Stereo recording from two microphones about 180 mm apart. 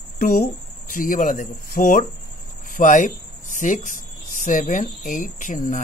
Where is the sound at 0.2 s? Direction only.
50° left (ahead or behind).